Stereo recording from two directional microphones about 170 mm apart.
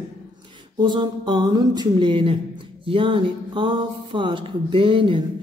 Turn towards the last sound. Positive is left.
turn(degrees=-30)  # may be behind; listen again after turning